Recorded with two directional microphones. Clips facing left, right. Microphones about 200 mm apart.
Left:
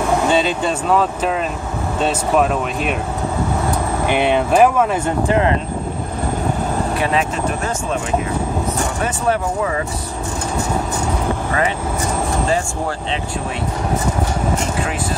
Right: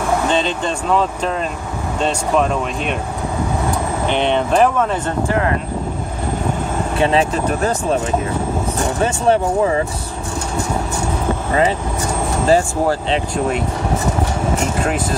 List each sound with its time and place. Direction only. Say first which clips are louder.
0.3 s speech: left 2 dB; 5° left (ahead or behind)
4.1 s speech: left 1 dB; 10° left (ahead or behind)
5.3 s speech: left 3 dB; 20° left (ahead or behind)
7.0 s speech: right 7 dB; 30° right (ahead or behind)
9.0 s speech: right 5 dB; 30° right (ahead or behind)
12.4 s speech: right 6 dB; 35° right (ahead or behind)